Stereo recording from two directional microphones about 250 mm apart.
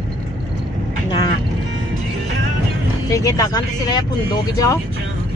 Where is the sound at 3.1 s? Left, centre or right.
Centre.